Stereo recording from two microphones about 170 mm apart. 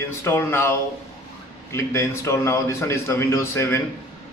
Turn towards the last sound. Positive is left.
turn(degrees=15)  # may be behind; listen again after turning